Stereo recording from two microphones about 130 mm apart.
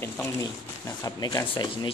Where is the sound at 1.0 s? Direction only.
30° left (ahead or behind).